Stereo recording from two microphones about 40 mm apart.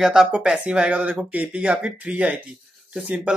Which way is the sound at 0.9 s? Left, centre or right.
Right.